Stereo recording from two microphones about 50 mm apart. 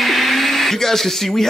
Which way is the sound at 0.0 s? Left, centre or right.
Centre.